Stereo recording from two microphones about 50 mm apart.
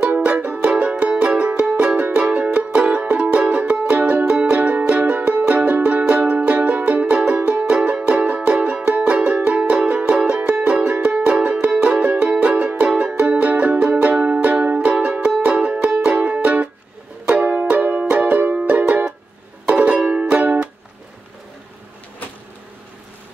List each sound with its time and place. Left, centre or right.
0.1 s music: right